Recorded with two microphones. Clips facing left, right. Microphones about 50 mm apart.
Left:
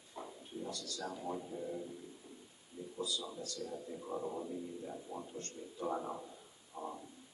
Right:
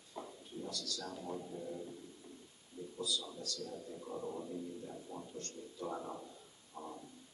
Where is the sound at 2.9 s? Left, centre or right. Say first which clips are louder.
Even; left.